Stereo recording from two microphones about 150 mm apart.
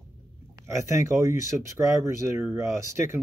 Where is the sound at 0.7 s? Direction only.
20° right (ahead or behind).